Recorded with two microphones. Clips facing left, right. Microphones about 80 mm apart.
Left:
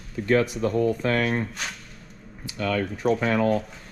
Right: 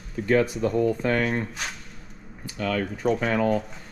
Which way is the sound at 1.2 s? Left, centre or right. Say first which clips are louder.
Left 1 dB; centre.